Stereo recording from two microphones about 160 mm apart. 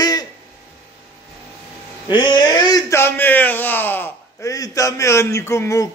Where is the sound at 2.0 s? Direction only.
30° left (ahead or behind).